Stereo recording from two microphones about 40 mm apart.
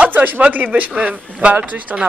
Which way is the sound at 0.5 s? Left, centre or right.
Right.